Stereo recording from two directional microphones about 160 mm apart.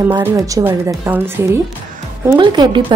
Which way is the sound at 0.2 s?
15° right (ahead or behind).